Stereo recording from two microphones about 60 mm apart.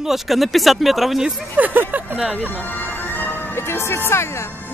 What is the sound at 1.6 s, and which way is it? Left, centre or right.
Speech, right.